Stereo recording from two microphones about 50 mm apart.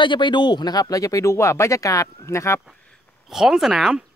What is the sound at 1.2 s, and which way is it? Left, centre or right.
Speech, left.